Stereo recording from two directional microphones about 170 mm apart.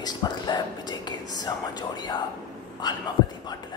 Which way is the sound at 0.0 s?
25° left (ahead or behind).